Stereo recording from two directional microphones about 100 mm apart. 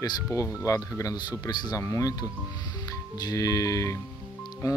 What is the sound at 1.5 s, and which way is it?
Speech, 45° left (ahead or behind).